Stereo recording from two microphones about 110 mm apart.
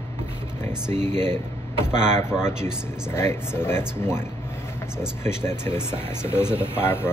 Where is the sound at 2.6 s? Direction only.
25° left (ahead or behind).